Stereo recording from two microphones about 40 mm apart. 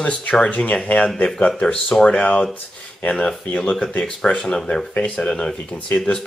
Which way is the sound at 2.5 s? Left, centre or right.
Left.